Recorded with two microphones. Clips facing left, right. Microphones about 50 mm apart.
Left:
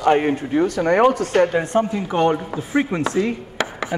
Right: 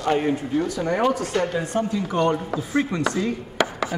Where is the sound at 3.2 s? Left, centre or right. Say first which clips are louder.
Left 2 dB; left.